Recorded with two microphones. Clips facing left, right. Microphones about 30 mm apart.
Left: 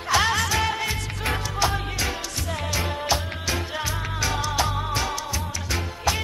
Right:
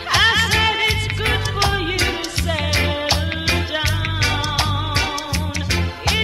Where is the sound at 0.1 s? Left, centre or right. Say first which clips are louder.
Right 6 dB; right.